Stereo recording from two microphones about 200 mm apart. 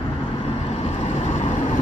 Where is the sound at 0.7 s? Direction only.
30° left (ahead or behind).